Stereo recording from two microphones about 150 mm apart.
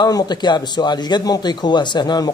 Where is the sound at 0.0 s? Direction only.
25° left (ahead or behind).